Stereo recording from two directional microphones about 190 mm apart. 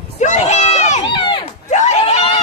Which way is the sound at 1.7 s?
35° left (ahead or behind).